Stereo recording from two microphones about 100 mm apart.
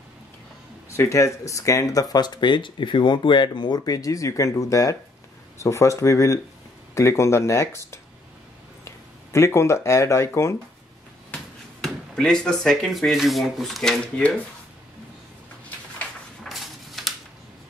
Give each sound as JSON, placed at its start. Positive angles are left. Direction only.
{"t": 0.8, "sound": "speech", "side_deg": 30}
{"t": 11.3, "sound": "speech", "side_deg": 5}
{"t": 16.4, "sound": "a sound", "side_deg": 0}